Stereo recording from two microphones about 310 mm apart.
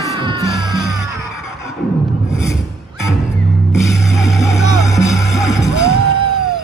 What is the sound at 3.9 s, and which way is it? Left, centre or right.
Music, centre.